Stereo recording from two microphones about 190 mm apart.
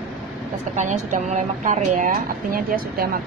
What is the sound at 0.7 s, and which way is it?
A woman's voice, 40° right (ahead or behind).